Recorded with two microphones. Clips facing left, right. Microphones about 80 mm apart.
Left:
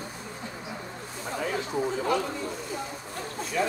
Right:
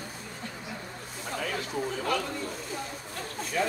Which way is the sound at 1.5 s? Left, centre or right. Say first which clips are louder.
Left 4 dB; centre.